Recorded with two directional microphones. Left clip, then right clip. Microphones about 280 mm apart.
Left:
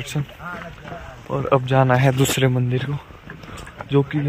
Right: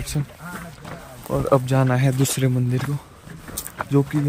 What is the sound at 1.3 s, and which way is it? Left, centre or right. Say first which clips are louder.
Speech: left 1 dB; centre.